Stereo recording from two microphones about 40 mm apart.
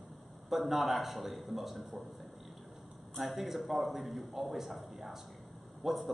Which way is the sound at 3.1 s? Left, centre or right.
Centre.